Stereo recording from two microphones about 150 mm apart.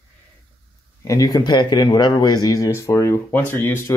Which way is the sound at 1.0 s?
25° left (ahead or behind).